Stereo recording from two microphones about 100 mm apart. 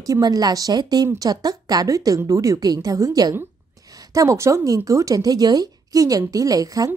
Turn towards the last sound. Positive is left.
turn(degrees=-35)  # may be behind; listen again after turning